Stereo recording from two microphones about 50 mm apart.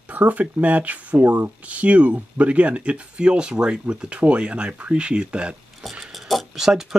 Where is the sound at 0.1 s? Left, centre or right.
Right.